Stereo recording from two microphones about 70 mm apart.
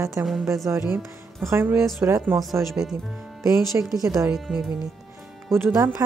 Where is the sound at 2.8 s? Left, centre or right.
Right.